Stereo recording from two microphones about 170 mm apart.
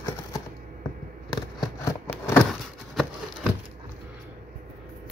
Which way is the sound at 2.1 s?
10° left (ahead or behind).